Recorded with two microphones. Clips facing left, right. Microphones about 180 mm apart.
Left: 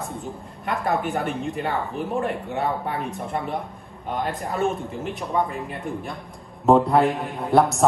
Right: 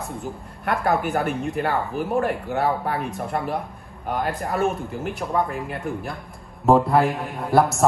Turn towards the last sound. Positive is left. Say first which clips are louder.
# even
turn(degrees=0)  # may be behind; listen again after turning